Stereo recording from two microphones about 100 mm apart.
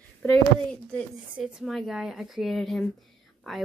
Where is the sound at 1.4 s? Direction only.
5° right (ahead or behind).